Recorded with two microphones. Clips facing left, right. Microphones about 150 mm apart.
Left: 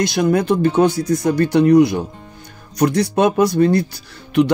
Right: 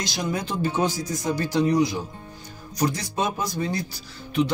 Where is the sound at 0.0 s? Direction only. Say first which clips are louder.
Left 12 dB; 60° left (ahead or behind).